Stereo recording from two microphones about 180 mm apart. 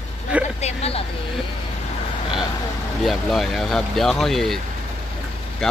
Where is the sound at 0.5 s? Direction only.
35° left (ahead or behind).